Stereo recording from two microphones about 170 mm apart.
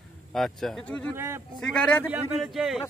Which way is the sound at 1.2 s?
15° right (ahead or behind).